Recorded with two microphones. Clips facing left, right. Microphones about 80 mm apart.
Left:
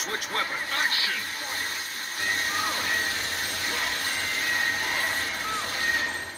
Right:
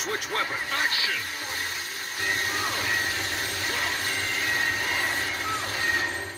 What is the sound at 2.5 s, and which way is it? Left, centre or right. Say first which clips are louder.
Vehicle: even; left.